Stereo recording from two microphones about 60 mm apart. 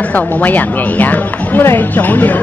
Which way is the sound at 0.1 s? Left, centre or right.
Left.